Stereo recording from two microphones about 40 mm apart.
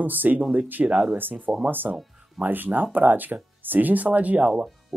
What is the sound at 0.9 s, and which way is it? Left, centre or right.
Speech, right.